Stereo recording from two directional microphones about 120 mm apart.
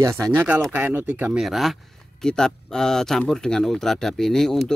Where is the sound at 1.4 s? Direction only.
Centre (ahead or behind).